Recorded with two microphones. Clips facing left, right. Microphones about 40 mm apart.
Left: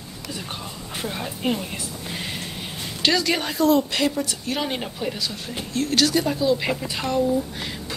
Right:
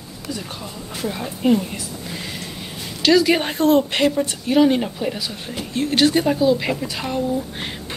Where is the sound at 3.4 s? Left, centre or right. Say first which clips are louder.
Right 3 dB; right.